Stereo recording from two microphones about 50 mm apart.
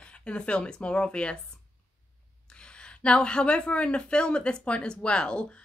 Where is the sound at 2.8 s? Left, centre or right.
Centre.